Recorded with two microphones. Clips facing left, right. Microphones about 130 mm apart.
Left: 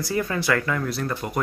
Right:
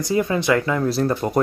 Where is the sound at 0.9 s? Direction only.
35° right (ahead or behind).